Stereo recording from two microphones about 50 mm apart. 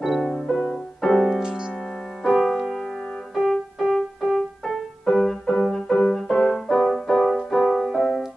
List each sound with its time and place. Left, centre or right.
0.0 s music: centre
1.4 s music: centre
1.7 s music: centre
3.3 s music: centre
4.6 s music: centre